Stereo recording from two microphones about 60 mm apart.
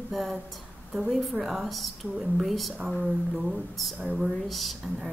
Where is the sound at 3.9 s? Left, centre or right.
Centre.